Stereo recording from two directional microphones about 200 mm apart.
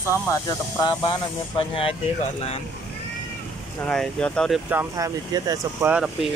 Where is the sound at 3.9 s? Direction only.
5° left (ahead or behind).